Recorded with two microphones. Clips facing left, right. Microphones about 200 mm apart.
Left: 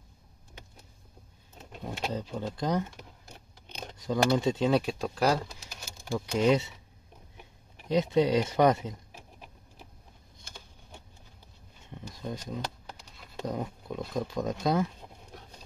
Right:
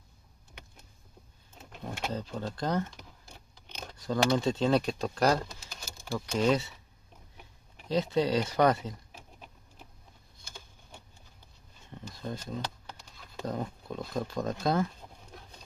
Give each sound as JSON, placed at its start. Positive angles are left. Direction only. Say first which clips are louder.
{"t": 1.8, "sound": "speech", "louder": "left 1 dB", "side_deg": 15}
{"t": 3.8, "sound": "a sound", "louder": "left 1 dB", "side_deg": 15}
{"t": 4.3, "sound": "speech", "louder": "even", "side_deg": 10}
{"t": 6.3, "sound": "speech", "louder": "left 2 dB", "side_deg": 20}
{"t": 7.9, "sound": "speech", "louder": "left 3 dB", "side_deg": 20}
{"t": 11.9, "sound": "a sound", "louder": "left 1 dB", "side_deg": 15}
{"t": 13.4, "sound": "speech", "louder": "left 1 dB", "side_deg": 15}